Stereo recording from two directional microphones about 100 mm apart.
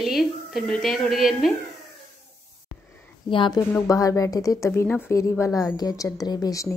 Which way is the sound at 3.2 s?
55° left (ahead or behind).